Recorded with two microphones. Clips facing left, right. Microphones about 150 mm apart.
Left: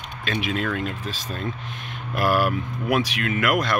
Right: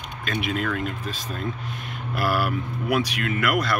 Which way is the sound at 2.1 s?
45° left (ahead or behind).